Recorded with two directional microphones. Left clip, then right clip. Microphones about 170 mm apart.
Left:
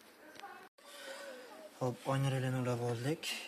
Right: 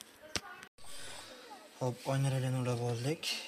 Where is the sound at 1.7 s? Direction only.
20° right (ahead or behind).